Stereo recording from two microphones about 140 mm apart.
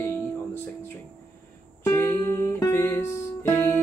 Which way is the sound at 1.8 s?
15° left (ahead or behind).